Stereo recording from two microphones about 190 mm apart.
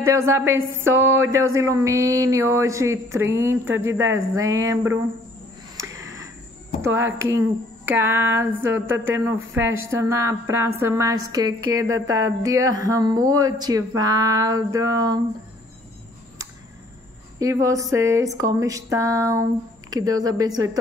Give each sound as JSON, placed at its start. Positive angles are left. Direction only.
{"t": 0.0, "sound": "speech", "side_deg": -15}
{"t": 6.8, "sound": "speech", "side_deg": -10}
{"t": 17.4, "sound": "speech", "side_deg": -15}